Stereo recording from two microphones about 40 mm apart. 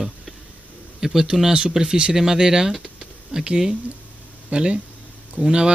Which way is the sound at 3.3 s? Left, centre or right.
Right.